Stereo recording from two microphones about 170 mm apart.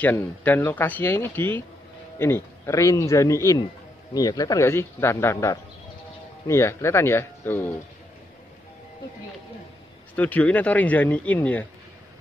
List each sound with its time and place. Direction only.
0.0 s speech: 10° left (ahead or behind)
10.1 s speech: 10° left (ahead or behind)